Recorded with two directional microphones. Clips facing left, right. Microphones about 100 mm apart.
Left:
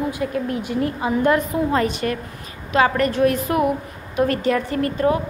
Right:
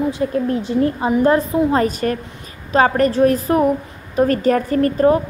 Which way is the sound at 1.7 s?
40° right (ahead or behind).